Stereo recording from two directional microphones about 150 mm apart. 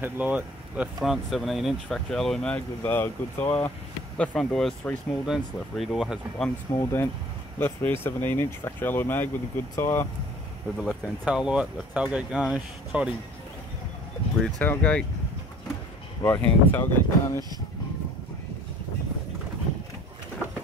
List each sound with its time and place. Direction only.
0.0 s speech: 10° right (ahead or behind)
6.7 s speech: 20° left (ahead or behind)
10.8 s speech: 5° right (ahead or behind)
14.4 s speech: 10° left (ahead or behind)
16.2 s speech: 15° left (ahead or behind)